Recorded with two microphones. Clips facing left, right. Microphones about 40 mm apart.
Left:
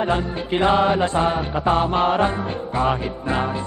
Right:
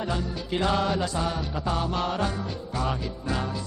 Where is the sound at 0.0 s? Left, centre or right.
Left.